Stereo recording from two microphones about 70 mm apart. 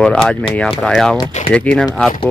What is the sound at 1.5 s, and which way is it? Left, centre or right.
Speech, left.